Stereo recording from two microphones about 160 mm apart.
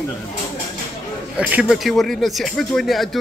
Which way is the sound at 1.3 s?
10° right (ahead or behind).